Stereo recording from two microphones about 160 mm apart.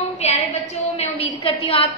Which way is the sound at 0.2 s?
40° left (ahead or behind).